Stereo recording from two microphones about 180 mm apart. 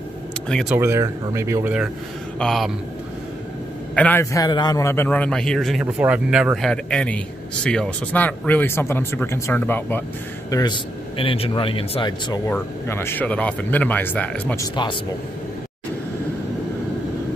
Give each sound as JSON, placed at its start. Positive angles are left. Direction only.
{"t": 0.5, "sound": "speech", "side_deg": 5}
{"t": 0.7, "sound": "speech", "side_deg": -15}
{"t": 2.3, "sound": "speech", "side_deg": 0}
{"t": 3.9, "sound": "a man's voice", "side_deg": 10}
{"t": 10.5, "sound": "a man's voice", "side_deg": 25}
{"t": 12.4, "sound": "a man's voice", "side_deg": 15}